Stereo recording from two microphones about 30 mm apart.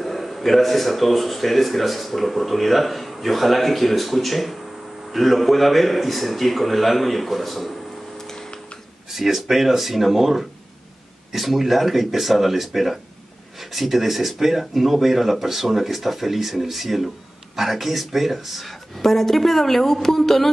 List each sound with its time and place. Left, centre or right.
0.0 s a man's voice: centre
8.2 s a sound: centre
9.1 s a man's voice: centre